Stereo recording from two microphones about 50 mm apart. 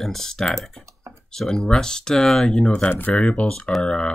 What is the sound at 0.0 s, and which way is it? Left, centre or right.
Speech, centre.